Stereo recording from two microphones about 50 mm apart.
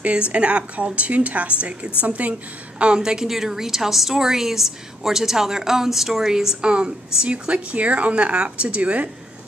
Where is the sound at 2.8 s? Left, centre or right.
Centre.